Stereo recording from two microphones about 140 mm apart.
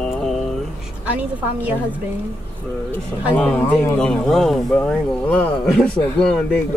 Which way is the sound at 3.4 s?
10° left (ahead or behind).